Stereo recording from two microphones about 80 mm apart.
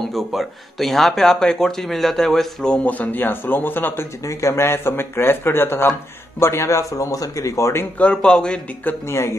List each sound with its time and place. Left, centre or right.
0.0 s speech: centre; by 7.8 s left
8.0 s speech: centre
8.8 s speech: left